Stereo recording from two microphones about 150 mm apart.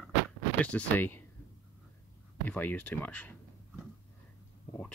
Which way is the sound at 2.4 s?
10° left (ahead or behind).